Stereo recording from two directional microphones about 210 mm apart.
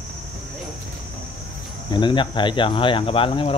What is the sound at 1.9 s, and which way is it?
Speech, 20° left (ahead or behind).